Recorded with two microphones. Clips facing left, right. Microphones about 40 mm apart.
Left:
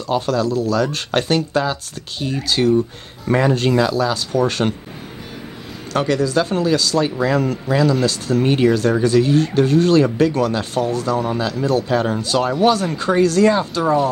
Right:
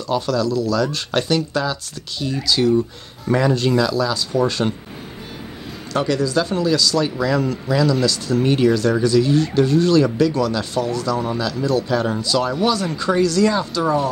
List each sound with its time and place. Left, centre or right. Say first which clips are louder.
0.0 s speech: left 1 dB; left
4.3 s speech: left 1 dB; left
5.9 s speech: left 2 dB; left